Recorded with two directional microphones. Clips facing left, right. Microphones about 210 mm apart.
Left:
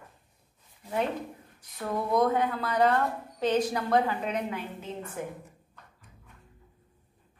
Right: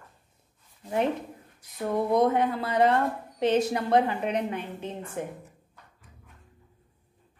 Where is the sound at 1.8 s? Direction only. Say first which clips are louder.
Right 3 dB; 25° right (ahead or behind).